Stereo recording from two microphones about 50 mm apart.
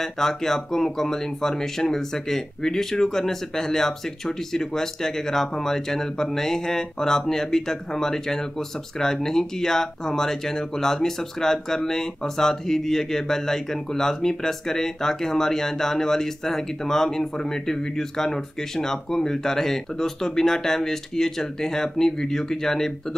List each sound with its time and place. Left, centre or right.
0.0 s speech: centre